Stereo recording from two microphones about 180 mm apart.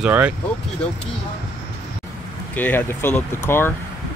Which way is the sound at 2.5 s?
10° left (ahead or behind).